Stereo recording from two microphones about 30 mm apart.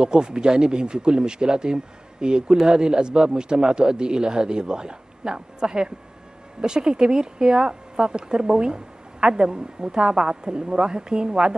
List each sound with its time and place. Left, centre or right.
0.0 s speech: right